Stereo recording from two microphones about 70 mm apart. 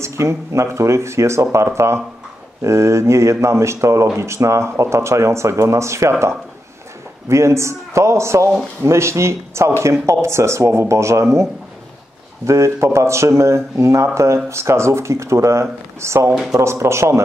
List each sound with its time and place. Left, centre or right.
0.0 s speech: right
12.4 s speech: right